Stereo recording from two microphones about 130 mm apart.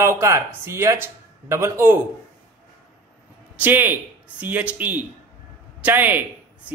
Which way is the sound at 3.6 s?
15° right (ahead or behind).